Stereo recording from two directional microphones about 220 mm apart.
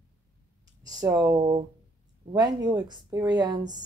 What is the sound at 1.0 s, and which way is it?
A woman's voice, 15° right (ahead or behind).